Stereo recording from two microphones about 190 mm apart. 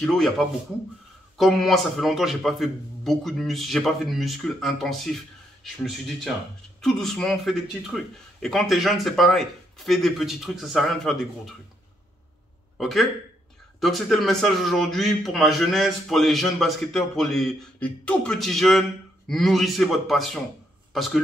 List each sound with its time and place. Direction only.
0.0 s a man's voice: centre (ahead or behind)
1.4 s a man's voice: centre (ahead or behind)
12.7 s a man's voice: centre (ahead or behind)